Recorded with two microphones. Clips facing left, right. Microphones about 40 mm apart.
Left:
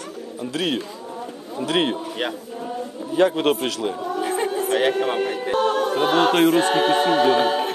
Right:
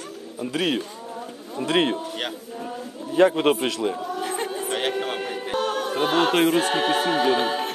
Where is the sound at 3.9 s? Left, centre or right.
Centre.